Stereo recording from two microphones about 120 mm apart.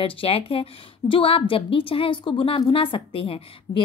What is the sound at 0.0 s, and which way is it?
A woman's voice, 50° left (ahead or behind).